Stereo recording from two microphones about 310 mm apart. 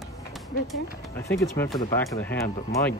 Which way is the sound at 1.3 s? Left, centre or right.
Centre.